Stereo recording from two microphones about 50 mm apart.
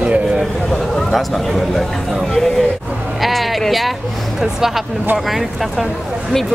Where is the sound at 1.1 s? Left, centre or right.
Centre.